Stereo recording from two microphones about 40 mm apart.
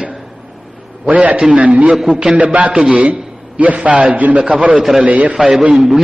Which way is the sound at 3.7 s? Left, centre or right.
Right.